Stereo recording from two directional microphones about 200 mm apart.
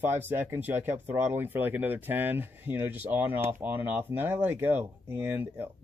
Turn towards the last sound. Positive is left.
turn(degrees=-10)  # may be behind; listen again after turning